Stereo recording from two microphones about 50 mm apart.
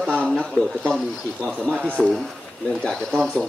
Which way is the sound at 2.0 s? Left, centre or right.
Centre.